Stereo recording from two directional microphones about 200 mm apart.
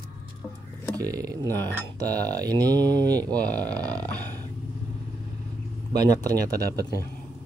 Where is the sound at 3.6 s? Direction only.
20° right (ahead or behind).